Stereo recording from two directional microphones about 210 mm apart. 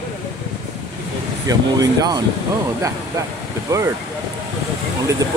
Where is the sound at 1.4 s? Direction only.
15° right (ahead or behind).